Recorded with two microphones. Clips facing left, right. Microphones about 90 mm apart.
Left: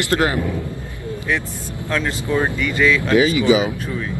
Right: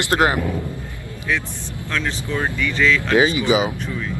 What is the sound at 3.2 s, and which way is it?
Speech, 25° right (ahead or behind).